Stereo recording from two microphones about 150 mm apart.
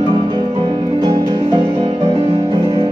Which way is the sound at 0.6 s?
25° right (ahead or behind).